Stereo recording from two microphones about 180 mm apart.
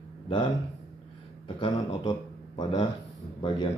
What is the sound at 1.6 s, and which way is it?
Speech, 25° left (ahead or behind).